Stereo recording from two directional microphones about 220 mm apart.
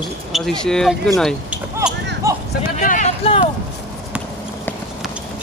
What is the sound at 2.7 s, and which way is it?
Speech, 35° left (ahead or behind).